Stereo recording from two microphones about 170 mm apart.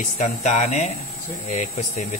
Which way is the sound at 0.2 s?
45° left (ahead or behind).